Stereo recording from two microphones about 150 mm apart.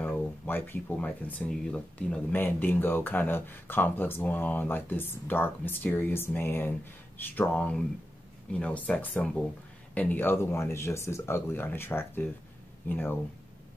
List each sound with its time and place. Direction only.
0.0 s speech: 15° left (ahead or behind)